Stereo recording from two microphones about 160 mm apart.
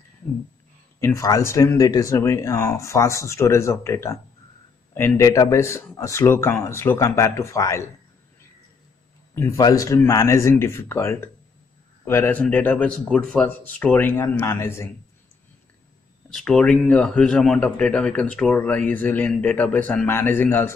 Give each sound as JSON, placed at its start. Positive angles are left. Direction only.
{"t": 1.0, "sound": "speech", "side_deg": 20}
{"t": 9.3, "sound": "speech", "side_deg": 20}
{"t": 16.3, "sound": "speech", "side_deg": 5}